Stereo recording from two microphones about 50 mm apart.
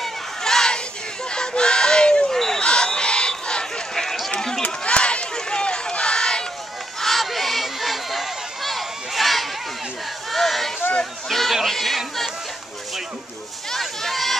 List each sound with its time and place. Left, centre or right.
0.0 s crowd: centre
1.3 s fowl: centre
2.3 s basketball bounce: centre
2.6 s crowd: centre
3.9 s run: centre
4.6 s run: left
7.0 s crowd: centre
10.3 s a sound: centre
13.7 s children playing: centre